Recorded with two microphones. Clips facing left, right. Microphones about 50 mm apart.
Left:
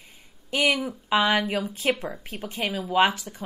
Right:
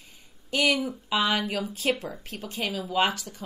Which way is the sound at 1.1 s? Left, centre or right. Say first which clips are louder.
Left 4 dB; left.